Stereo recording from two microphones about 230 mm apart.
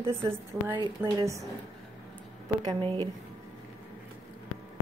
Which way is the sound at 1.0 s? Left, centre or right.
Centre.